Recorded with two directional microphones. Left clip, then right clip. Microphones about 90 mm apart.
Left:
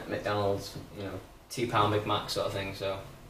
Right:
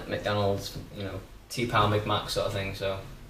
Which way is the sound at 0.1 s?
25° right (ahead or behind).